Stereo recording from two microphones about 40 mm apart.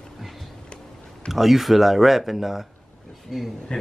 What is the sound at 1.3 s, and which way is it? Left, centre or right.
Mantra, centre.